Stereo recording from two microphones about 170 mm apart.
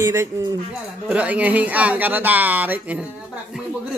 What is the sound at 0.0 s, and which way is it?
Speech, 15° right (ahead or behind).